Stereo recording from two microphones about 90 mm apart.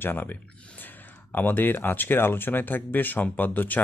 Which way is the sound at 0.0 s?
20° left (ahead or behind).